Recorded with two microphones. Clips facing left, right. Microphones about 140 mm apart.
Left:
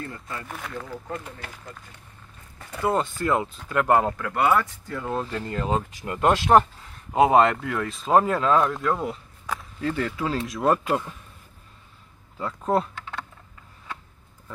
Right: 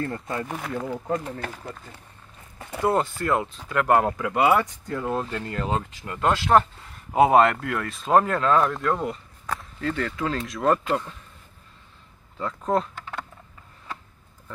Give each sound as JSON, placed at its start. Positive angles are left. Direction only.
{"t": 0.5, "sound": "speech", "side_deg": -10}
{"t": 1.0, "sound": "speech", "side_deg": -40}
{"t": 2.8, "sound": "speech", "side_deg": -10}
{"t": 3.3, "sound": "speech", "side_deg": 0}
{"t": 5.3, "sound": "speech", "side_deg": 0}
{"t": 7.1, "sound": "speech", "side_deg": -5}
{"t": 12.4, "sound": "speech", "side_deg": 5}